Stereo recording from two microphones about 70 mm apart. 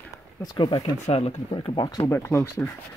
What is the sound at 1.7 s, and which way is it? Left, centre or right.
Speech, left.